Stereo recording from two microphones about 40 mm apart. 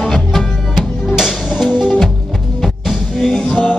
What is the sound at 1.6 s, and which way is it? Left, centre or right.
Music, right.